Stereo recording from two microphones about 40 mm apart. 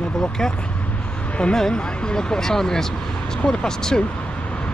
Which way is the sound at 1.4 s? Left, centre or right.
Centre.